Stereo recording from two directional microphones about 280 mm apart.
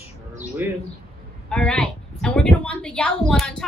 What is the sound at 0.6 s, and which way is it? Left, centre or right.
Bird, centre.